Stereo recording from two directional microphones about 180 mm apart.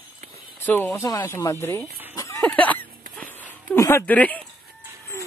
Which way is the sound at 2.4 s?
10° left (ahead or behind).